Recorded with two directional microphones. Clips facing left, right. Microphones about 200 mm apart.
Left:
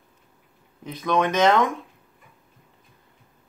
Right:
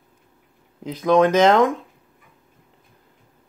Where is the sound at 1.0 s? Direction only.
35° right (ahead or behind).